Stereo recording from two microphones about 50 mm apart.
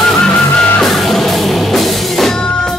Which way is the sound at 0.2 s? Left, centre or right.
Centre.